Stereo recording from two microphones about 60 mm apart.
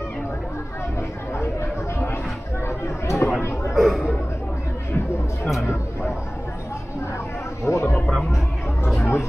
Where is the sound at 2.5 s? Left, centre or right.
Left.